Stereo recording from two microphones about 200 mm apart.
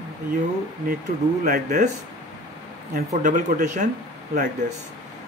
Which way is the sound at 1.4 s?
40° right (ahead or behind).